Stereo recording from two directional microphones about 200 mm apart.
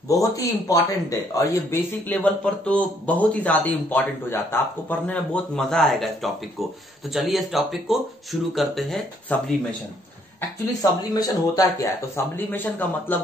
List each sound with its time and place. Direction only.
0.1 s speech: 15° left (ahead or behind); by 9.4 s centre (ahead or behind)
10.8 s speech: 20° left (ahead or behind)